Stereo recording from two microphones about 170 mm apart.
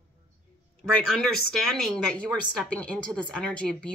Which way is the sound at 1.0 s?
Centre (ahead or behind).